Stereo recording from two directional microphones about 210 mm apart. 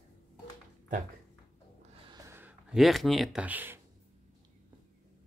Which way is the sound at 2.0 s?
10° right (ahead or behind).